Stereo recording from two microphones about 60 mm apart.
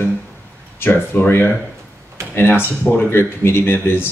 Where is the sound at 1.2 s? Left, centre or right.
Left.